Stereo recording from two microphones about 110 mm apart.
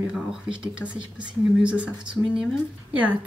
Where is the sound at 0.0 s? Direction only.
5° right (ahead or behind).